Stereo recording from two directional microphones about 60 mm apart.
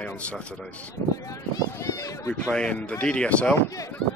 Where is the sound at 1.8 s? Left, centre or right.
Left.